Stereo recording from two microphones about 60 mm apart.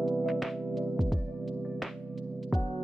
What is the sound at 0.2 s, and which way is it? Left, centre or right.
Music, centre.